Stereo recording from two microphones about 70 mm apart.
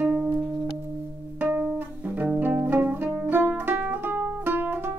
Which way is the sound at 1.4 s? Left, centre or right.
Right.